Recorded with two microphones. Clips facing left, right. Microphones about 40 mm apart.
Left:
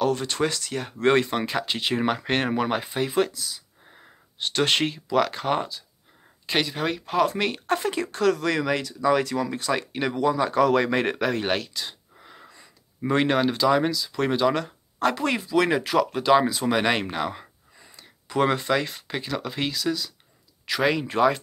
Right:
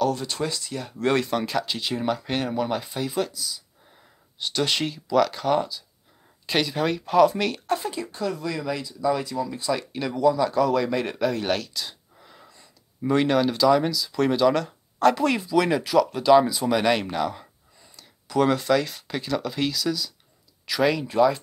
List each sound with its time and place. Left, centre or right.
0.0 s speech: left
1.8 s speech: left
6.4 s speech: centre
7.6 s speech: left
11.4 s speech: left
21.1 s speech: left